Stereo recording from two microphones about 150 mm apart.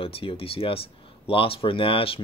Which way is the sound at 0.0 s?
40° left (ahead or behind).